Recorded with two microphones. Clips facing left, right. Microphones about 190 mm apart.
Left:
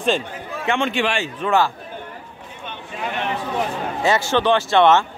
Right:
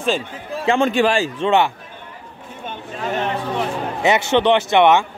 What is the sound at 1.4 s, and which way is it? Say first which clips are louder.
Speech: right 1 dB; 20° right (ahead or behind).